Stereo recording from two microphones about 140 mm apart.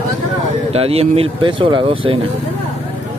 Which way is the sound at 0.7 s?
45° right (ahead or behind).